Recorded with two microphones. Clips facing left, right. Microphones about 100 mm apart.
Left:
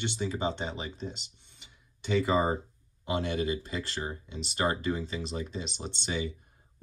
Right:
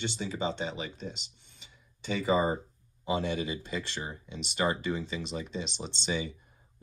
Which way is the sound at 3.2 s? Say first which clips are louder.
Left 2 dB; 45° left (ahead or behind).